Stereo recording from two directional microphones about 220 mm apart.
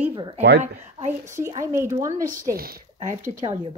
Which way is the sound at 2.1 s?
35° right (ahead or behind).